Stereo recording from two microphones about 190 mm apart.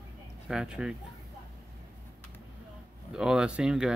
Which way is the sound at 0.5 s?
5° right (ahead or behind).